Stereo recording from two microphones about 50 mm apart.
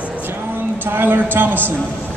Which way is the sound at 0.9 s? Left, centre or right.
Right.